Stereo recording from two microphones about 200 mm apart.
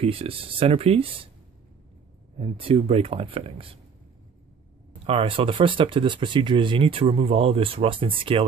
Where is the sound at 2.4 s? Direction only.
30° right (ahead or behind).